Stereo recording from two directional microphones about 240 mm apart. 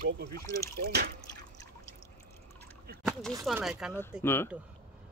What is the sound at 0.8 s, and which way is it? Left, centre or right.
Speech, right.